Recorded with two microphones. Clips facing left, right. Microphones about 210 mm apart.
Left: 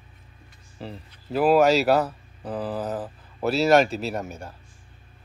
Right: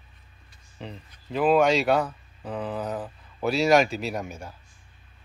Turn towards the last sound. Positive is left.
turn(degrees=0)  # may be behind; listen again after turning